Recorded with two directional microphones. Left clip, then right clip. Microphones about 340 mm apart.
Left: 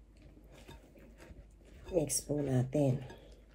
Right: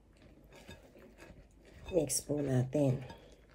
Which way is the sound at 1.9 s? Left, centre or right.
Centre.